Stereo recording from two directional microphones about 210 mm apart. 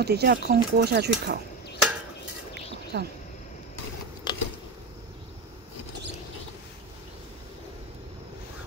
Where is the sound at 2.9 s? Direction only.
50° right (ahead or behind).